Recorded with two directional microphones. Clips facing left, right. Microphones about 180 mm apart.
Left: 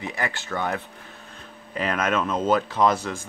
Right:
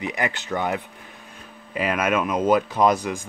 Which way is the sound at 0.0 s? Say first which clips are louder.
Right 3 dB; 15° right (ahead or behind).